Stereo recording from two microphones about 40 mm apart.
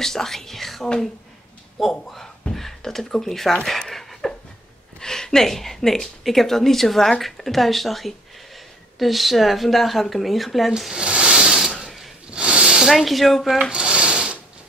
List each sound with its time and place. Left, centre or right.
0.0 s speech: centre
3.6 s dog: centre
5.0 s a woman's voice: centre
10.9 s a sound: right
11.3 s mechanisms: centre
11.8 s a sound: centre
12.3 s snake: right
12.9 s speech: centre
13.7 s a sound: right